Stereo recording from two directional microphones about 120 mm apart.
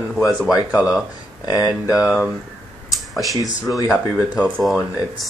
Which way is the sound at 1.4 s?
30° left (ahead or behind).